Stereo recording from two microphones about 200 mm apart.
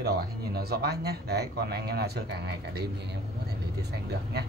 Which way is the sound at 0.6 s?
50° right (ahead or behind).